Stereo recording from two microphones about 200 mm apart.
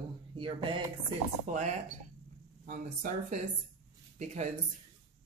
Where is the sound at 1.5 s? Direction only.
40° right (ahead or behind).